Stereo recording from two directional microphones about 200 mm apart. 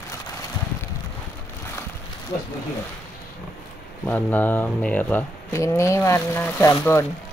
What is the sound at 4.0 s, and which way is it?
Speech, 10° left (ahead or behind).